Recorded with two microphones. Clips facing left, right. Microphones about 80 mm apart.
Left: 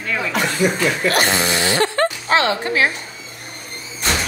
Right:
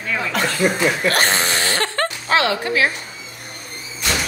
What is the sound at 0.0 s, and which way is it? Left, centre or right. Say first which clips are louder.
Speech: left 1 dB; centre.